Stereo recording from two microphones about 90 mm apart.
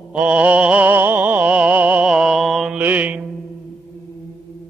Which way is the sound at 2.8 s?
20° right (ahead or behind).